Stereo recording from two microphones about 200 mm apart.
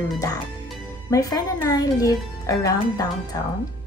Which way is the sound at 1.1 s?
20° left (ahead or behind).